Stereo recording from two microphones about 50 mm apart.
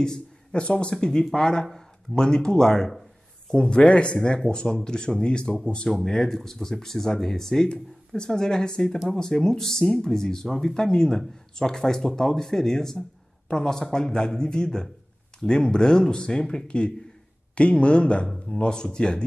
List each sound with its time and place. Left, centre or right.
0.0 s speech: centre
3.5 s speech: left
5.9 s speech: centre